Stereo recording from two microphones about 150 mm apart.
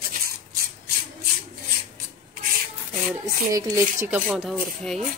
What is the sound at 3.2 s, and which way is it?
Speech, 20° right (ahead or behind).